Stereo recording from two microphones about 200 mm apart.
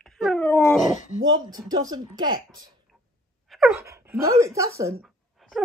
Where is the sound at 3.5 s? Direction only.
Centre (ahead or behind).